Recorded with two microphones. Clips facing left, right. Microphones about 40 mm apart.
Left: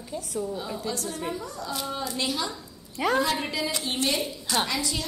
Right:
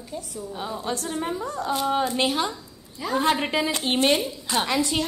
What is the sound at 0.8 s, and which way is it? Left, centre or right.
A woman's voice, right.